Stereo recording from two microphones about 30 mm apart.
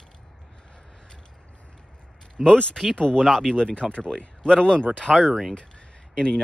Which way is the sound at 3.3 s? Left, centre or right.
Centre.